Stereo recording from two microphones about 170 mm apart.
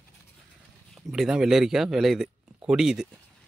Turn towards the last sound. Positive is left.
turn(degrees=-5)  # may be behind; listen again after turning